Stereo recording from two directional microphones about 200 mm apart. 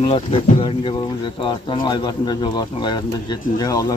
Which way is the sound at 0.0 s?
30° left (ahead or behind).